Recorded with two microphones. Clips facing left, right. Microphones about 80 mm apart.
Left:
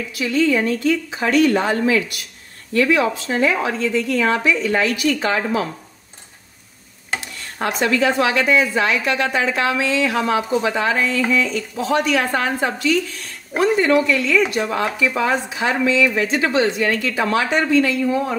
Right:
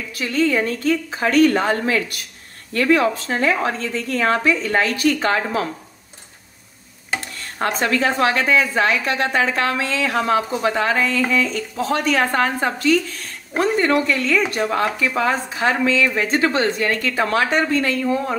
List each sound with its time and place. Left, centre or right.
0.1 s a woman's voice: right
7.2 s a woman's voice: right